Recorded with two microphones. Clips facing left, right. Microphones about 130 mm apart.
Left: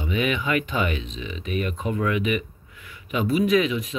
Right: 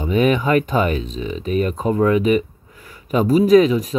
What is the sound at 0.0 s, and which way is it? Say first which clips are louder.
Speech: right 8 dB; 40° right (ahead or behind).